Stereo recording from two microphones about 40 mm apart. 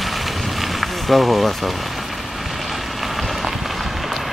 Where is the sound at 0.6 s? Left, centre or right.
Centre.